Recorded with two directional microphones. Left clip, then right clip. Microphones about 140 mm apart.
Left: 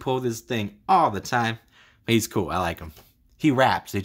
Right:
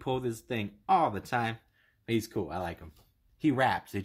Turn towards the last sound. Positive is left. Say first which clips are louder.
# left 7 dB
turn(degrees=25)  # may be behind; listen again after turning